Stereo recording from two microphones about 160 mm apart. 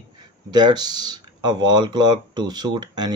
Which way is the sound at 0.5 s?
25° right (ahead or behind).